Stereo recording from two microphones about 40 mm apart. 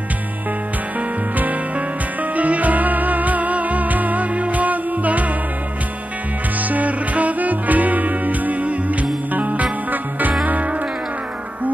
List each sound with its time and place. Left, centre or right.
2.3 s music: right
6.7 s music: right